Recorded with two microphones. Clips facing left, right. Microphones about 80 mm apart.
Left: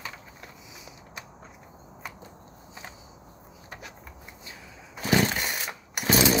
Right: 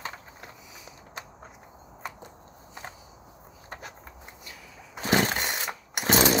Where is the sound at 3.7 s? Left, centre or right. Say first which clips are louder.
Right 2 dB; right.